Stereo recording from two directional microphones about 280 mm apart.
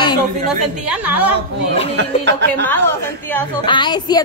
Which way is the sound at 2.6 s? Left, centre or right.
Centre.